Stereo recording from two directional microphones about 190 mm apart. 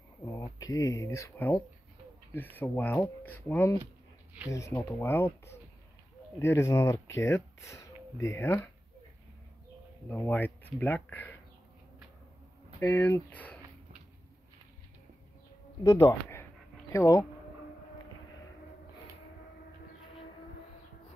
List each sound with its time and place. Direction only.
0.2 s speech: 15° left (ahead or behind)
3.8 s a sound: 10° right (ahead or behind)
4.5 s speech: 15° left (ahead or behind)
10.0 s speech: 10° left (ahead or behind)
12.8 s speech: 15° left (ahead or behind)
15.8 s speech: 20° left (ahead or behind)